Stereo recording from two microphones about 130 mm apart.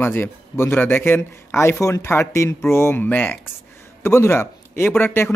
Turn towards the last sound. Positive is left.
turn(degrees=15)  # may be behind; listen again after turning